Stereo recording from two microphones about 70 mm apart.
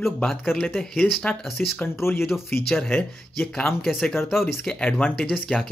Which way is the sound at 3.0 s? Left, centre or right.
Centre.